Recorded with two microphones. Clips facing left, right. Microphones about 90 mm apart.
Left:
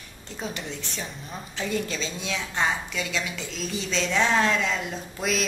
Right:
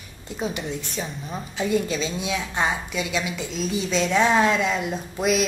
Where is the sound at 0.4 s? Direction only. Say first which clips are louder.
Right 5 dB; 10° right (ahead or behind).